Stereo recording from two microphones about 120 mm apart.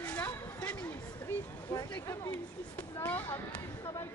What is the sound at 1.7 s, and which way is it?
Speech, 30° left (ahead or behind).